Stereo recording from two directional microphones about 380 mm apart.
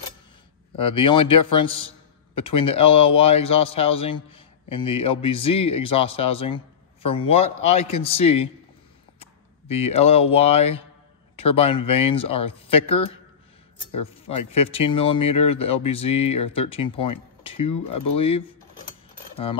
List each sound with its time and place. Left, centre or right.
0.7 s a man's voice: centre